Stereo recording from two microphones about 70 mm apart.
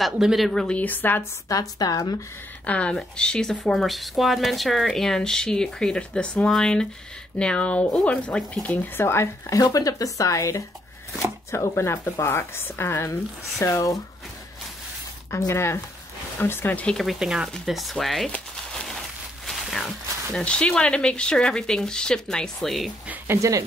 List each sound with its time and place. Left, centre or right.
0.0 s speech: centre
0.7 s a woman's voice: left
1.5 s speech: left
2.6 s speech: centre
8.9 s speech: left
9.8 s speech: left
15.3 s speech: left
17.0 s speech: centre
18.3 s a sound: centre
20.3 s speech: centre
23.2 s speech: right